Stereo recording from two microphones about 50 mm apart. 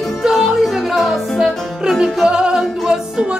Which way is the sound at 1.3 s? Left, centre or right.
Centre.